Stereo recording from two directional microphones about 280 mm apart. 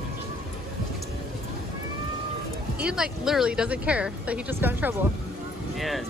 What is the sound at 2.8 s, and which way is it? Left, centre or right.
Speech, centre.